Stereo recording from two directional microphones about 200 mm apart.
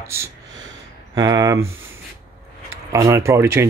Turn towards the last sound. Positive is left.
turn(degrees=-15)  # may be behind; listen again after turning